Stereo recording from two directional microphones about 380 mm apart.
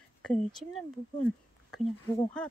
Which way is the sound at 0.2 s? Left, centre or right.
Centre.